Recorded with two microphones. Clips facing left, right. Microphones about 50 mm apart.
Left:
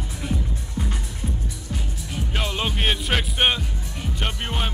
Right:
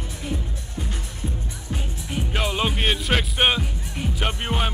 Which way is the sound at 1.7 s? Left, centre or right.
Right.